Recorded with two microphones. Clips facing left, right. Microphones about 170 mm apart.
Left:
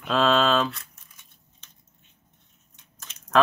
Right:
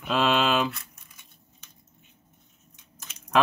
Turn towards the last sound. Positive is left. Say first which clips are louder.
# left 2 dB
turn(degrees=-10)  # may be behind; listen again after turning